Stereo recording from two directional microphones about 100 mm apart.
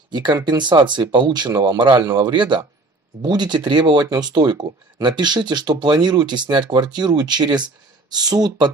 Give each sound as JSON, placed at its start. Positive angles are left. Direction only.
{"t": 0.1, "sound": "speech", "side_deg": -45}